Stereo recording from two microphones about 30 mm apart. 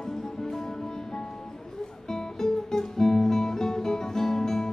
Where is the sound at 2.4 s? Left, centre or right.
Centre.